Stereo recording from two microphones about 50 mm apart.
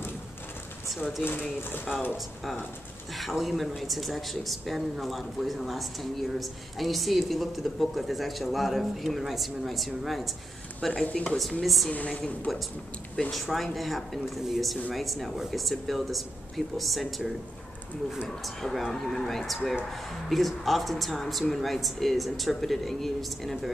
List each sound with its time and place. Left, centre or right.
3.2 s speech: centre
11.9 s a woman's voice: left
12.5 s speech: centre
18.4 s speech: centre